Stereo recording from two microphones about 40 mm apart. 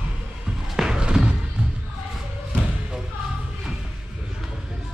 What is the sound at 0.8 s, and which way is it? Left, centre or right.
Music, right.